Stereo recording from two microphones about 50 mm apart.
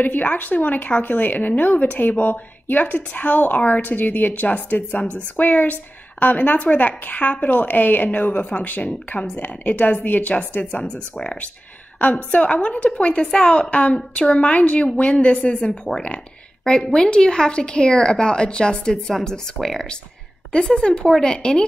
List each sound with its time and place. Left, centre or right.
0.0 s a woman's voice: left
10.8 s a woman's voice: centre
12.0 s a woman's voice: left